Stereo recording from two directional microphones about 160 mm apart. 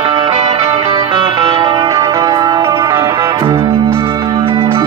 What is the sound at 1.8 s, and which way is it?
Music, 20° right (ahead or behind).